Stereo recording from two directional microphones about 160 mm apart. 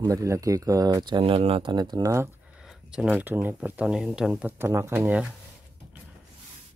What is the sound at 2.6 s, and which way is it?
Speech, 5° right (ahead or behind).